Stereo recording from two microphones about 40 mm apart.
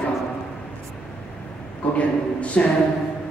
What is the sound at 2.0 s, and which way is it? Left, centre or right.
Speech, left.